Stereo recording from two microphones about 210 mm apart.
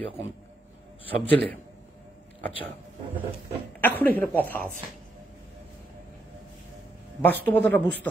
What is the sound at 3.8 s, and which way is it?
Speech, 10° left (ahead or behind).